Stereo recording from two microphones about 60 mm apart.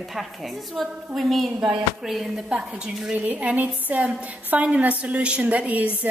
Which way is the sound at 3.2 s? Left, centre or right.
Right.